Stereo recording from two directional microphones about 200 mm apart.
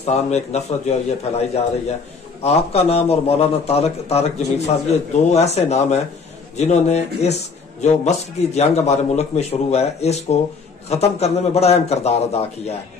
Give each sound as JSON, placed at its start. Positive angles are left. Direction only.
{"t": 0.0, "sound": "a man's voice", "side_deg": 35}